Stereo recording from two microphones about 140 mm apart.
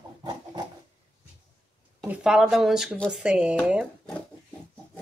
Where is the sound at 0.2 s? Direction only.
30° right (ahead or behind).